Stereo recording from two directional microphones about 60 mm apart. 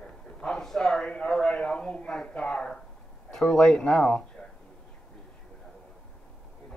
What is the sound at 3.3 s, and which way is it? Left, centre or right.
Speech, centre.